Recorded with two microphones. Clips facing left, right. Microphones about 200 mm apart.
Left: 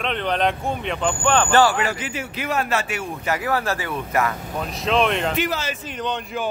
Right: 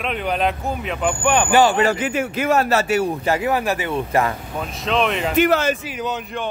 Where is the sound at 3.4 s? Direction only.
15° right (ahead or behind).